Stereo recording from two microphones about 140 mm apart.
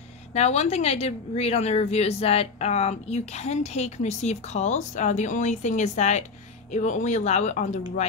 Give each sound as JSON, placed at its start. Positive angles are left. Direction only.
{"t": 0.3, "sound": "a woman's voice", "side_deg": 50}